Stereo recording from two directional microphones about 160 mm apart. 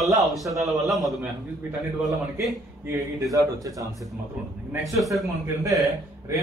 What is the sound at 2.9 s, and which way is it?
A man's voice, 20° right (ahead or behind).